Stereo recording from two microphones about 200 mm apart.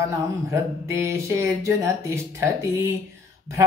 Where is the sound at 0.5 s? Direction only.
15° right (ahead or behind).